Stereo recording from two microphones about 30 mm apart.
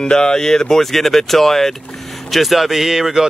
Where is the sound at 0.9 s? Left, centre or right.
Centre.